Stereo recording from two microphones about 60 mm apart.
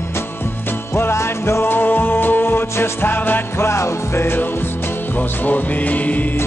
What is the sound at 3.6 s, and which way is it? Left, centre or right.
Music, left.